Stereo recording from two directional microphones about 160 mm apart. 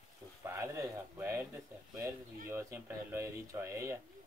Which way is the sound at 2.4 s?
15° right (ahead or behind).